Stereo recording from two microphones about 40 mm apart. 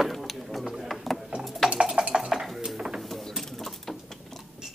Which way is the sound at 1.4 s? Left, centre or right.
Centre.